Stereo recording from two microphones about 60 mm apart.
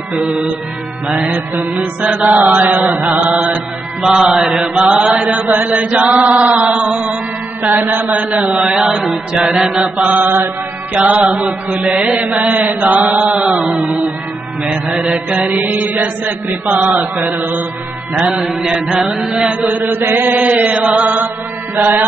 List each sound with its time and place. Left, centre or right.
0.2 s mantra: centre
1.5 s mantra: right
4.0 s mantra: centre
5.2 s mantra: right
7.8 s mantra: right
8.9 s mantra: centre; by 11.2 s right
12.4 s mantra: right
13.4 s a sound: centre
14.6 s mantra: centre
18.9 s mantra: centre
19.7 s chant: right
20.3 s mantra: right
21.7 s chant: right